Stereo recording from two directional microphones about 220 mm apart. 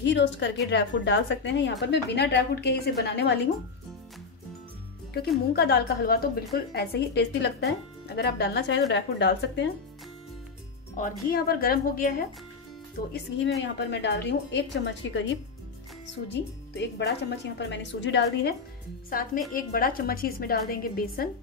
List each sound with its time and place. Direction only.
0.0 s a woman's voice: 55° left (ahead or behind)
5.5 s a woman's voice: 50° left (ahead or behind)
11.0 s a woman's voice: 40° left (ahead or behind)
19.0 s a woman's voice: 40° left (ahead or behind)